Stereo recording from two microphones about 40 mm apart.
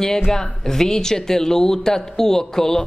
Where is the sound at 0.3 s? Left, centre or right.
Centre.